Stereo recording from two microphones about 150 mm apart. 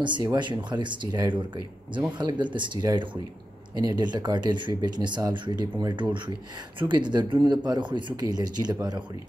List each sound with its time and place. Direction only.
0.0 s speech: 30° right (ahead or behind)